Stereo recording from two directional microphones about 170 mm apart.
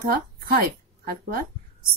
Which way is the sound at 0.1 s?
65° right (ahead or behind).